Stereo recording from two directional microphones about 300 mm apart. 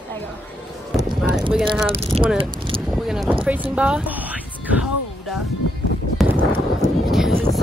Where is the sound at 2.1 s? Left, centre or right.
Centre.